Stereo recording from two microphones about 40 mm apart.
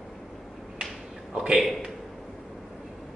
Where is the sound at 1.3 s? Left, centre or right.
Centre.